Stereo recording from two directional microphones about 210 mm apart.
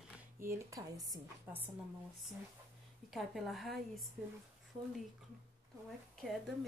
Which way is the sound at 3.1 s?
Centre (ahead or behind).